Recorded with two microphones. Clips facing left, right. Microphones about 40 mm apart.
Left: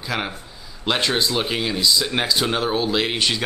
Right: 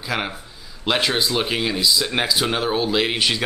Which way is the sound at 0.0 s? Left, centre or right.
Centre.